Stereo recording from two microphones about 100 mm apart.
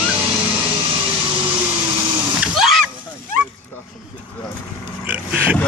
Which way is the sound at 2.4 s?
5° right (ahead or behind).